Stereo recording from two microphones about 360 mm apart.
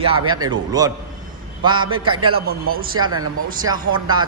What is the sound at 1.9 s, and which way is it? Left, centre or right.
Speech, centre.